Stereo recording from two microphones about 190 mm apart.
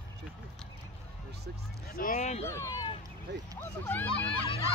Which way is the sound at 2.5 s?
15° left (ahead or behind).